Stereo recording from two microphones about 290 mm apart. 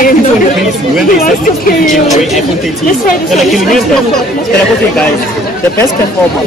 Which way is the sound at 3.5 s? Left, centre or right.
Centre.